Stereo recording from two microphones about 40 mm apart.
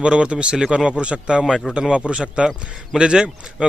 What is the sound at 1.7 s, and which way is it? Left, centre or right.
Speech, right.